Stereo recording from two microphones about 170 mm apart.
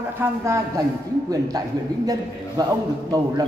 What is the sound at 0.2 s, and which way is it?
Speech, 10° right (ahead or behind).